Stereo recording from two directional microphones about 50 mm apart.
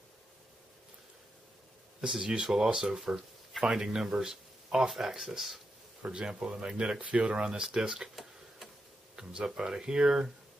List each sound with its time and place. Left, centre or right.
2.0 s speech: centre
3.0 s cash register: centre
3.6 s speech: centre
6.2 s speech: centre
9.1 s speech: centre